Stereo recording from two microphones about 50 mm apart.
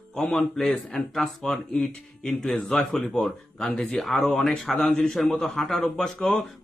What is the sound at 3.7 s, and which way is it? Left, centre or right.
Speech, centre.